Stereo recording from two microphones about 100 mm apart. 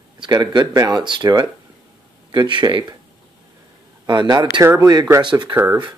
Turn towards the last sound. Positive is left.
turn(degrees=-35)  # may be behind; listen again after turning